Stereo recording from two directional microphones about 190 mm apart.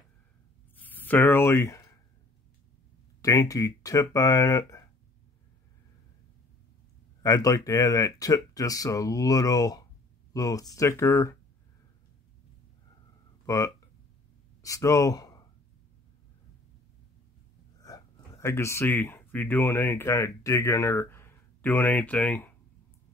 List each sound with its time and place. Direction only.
0.7 s a sound: 10° left (ahead or behind)
3.2 s speech: 20° left (ahead or behind)
7.2 s speech: 15° left (ahead or behind)
13.5 s speech: 15° left (ahead or behind)
17.8 s speech: 20° left (ahead or behind)